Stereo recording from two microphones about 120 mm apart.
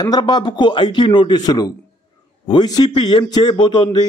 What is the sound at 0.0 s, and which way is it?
A man's voice, 35° left (ahead or behind).